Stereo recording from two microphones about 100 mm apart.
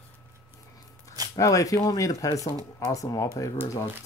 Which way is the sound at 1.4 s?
35° left (ahead or behind).